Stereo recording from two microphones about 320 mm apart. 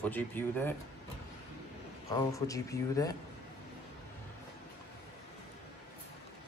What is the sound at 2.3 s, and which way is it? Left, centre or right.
Speech, centre.